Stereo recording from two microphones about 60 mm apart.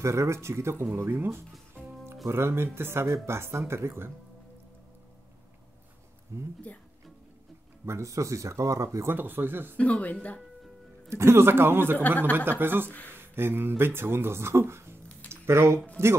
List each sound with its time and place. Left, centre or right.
0.0 s a man's voice: right
6.3 s speech: right
7.8 s speech: right
9.0 s a man's voice: right
9.8 s speech: left
11.1 s a man's voice: right